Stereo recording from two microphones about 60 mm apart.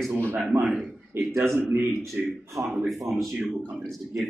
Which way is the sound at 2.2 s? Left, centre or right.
Centre.